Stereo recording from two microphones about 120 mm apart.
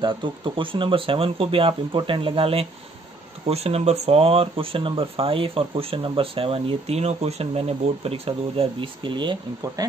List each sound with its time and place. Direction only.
0.0 s speech: 45° right (ahead or behind)